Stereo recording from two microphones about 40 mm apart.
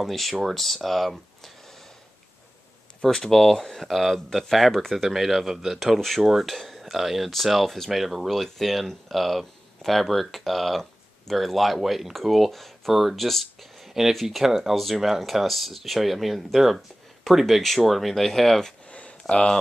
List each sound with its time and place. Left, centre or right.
0.0 s speech: centre
3.0 s speech: centre
18.9 s a sound: left